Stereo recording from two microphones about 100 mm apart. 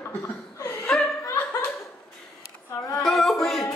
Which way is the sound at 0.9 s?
5° left (ahead or behind).